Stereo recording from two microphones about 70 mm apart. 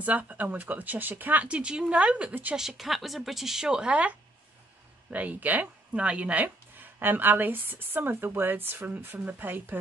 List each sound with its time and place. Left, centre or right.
0.0 s speech: right
2.5 s a woman's voice: centre
5.1 s speech: right